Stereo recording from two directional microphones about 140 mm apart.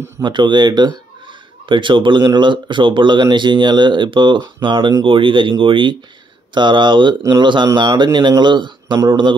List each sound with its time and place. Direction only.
0.2 s speech: 35° right (ahead or behind)